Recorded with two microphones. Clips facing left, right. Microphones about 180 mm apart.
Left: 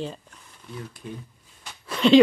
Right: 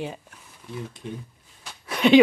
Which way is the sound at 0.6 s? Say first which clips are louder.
Right 3 dB; 5° right (ahead or behind).